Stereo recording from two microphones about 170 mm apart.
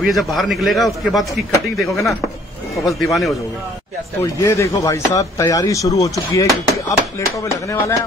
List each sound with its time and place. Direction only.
0.0 s a man's voice: centre (ahead or behind)
4.4 s speech: 20° left (ahead or behind)